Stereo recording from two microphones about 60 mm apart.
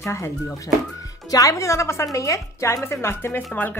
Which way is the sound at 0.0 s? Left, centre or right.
Left.